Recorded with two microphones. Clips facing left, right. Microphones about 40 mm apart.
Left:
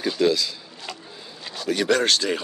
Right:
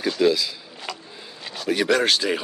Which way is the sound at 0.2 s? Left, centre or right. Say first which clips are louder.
Right 1 dB; centre.